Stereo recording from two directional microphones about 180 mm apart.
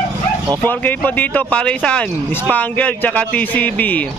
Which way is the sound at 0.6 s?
10° left (ahead or behind).